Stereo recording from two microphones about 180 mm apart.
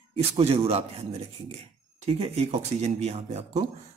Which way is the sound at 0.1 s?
35° right (ahead or behind).